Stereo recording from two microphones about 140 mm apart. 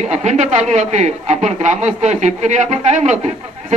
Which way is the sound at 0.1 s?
55° right (ahead or behind).